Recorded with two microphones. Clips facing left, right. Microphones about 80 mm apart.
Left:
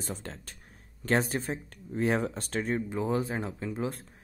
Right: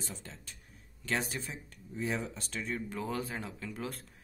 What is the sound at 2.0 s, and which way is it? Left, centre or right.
Speech, left.